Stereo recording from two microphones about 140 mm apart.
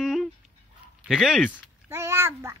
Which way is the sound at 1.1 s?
Centre (ahead or behind).